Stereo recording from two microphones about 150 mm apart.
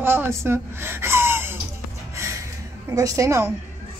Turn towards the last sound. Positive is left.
turn(degrees=-20)  # may be behind; listen again after turning